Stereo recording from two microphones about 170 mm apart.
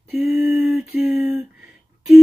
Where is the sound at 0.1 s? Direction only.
Centre (ahead or behind).